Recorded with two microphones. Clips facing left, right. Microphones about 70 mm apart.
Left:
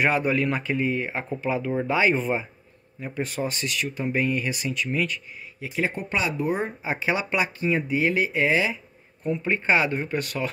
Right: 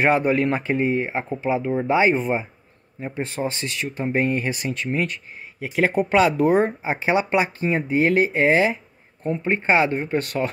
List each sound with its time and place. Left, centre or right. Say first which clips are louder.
0.0 s speech: right 4 dB; right
6.8 s speech: right 5 dB; right
9.2 s speech: right 2 dB; right